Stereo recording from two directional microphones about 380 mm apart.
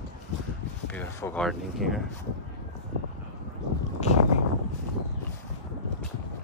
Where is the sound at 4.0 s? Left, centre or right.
Centre.